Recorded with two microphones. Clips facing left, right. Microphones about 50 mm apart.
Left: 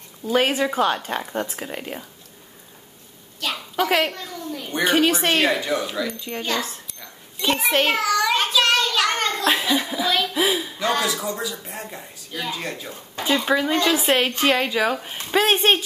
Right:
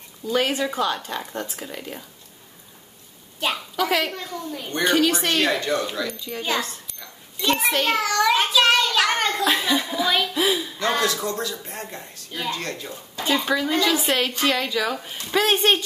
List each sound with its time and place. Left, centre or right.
0.2 s a woman's voice: left
0.8 s a woman's voice: left
3.4 s a woman's voice: centre
3.8 s a woman's voice: left
4.1 s a child's voice: centre
4.6 s speech: centre
6.6 s a sound: centre
7.9 s child singing: centre
9.5 s chuckle: centre
10.0 s a child's voice: centre
13.5 s a woman's voice: left